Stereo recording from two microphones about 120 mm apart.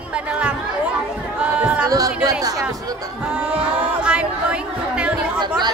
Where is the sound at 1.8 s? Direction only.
30° right (ahead or behind).